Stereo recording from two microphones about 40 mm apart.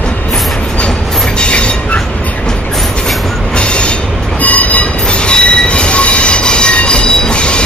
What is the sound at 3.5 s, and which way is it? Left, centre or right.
Train, left.